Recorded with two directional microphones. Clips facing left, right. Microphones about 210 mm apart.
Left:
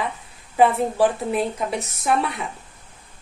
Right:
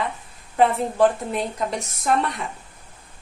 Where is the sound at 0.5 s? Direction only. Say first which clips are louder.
Left 2 dB; 5° left (ahead or behind).